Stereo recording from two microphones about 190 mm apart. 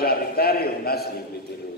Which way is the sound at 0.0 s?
55° left (ahead or behind).